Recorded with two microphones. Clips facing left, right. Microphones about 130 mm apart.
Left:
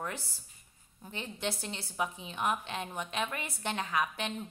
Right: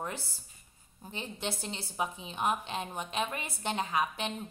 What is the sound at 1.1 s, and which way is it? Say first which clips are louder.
A woman's voice: left 1 dB; 30° right (ahead or behind).